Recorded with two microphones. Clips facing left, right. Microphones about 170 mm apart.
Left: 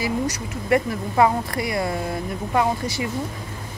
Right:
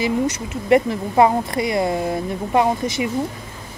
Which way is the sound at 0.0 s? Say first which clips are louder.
Right 4 dB; 20° right (ahead or behind).